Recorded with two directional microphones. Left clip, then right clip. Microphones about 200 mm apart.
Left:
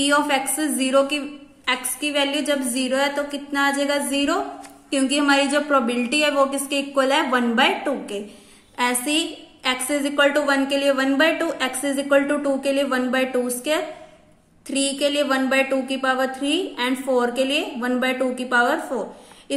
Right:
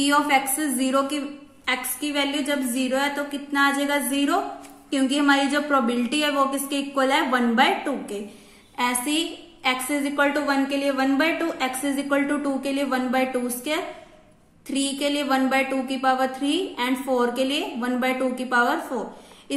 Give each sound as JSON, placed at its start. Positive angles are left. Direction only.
{"t": 0.0, "sound": "a woman's voice", "side_deg": 10}